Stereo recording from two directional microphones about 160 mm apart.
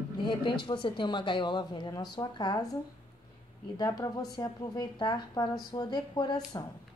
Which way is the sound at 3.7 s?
25° left (ahead or behind).